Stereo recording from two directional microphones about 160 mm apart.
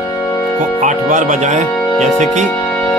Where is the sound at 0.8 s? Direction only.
50° right (ahead or behind).